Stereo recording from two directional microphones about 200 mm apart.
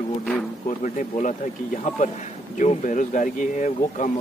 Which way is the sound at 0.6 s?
40° left (ahead or behind).